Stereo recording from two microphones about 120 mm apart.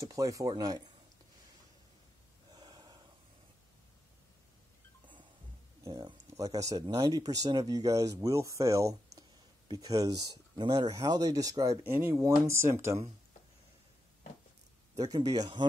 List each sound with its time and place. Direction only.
0.0 s speech: 25° right (ahead or behind)
2.5 s snort: 35° right (ahead or behind)
5.9 s speech: 35° right (ahead or behind)
11.8 s speech: 20° right (ahead or behind)
15.0 s speech: 30° right (ahead or behind)